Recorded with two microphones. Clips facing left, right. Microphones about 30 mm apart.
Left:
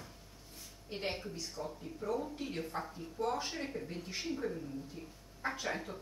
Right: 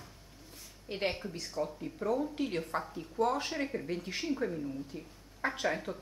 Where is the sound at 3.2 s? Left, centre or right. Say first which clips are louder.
Right 6 dB; right.